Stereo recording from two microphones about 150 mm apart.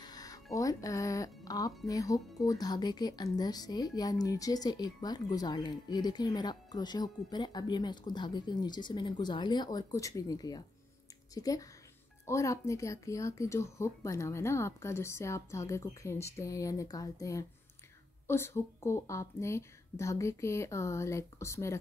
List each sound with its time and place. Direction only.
0.0 s music: 25° left (ahead or behind)
1.9 s speech: 25° left (ahead or behind)